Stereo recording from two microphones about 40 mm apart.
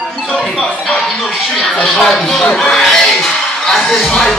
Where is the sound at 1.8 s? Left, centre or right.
Centre.